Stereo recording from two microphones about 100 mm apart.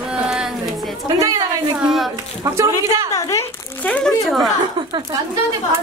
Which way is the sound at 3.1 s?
30° left (ahead or behind).